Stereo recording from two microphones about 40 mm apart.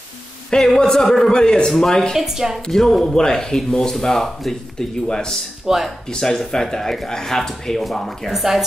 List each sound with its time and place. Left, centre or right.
0.7 s a man's voice: centre
1.0 s a man's voice: centre
1.3 s speech: centre
2.1 s a woman's voice: centre
2.7 s speech: centre
5.7 s a woman's voice: centre
6.1 s speech: centre
8.3 s a woman's voice: centre